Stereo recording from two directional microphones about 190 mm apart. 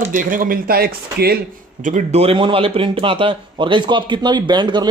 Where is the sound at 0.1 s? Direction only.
45° right (ahead or behind).